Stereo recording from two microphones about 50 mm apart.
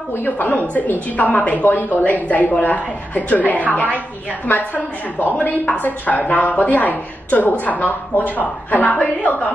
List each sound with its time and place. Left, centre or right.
0.2 s a woman's voice: left